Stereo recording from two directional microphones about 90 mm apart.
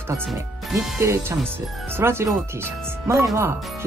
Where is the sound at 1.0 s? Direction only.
35° right (ahead or behind).